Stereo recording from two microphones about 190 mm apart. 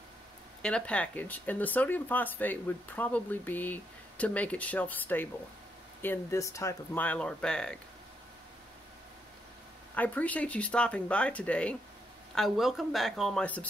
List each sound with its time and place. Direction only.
0.6 s speech: 5° left (ahead or behind)
9.9 s speech: 10° left (ahead or behind)